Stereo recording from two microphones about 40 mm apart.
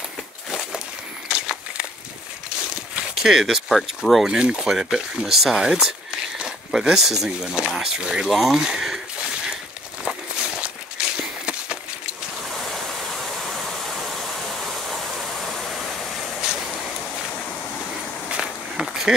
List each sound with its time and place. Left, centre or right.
1.3 s walk: right
3.2 s speech: centre
3.6 s speech: centre
4.3 s speech: centre
4.6 s speech: centre
8.3 s speech: centre
11.0 s a sound: right
18.3 s walk: centre